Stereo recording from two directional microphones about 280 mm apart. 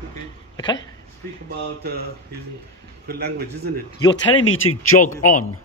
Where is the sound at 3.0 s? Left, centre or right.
Right.